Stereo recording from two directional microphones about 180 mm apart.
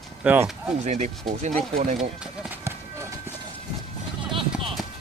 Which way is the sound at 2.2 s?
5° right (ahead or behind).